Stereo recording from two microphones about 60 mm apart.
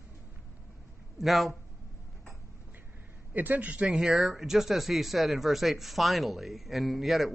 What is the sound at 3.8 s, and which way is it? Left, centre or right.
Speech, centre.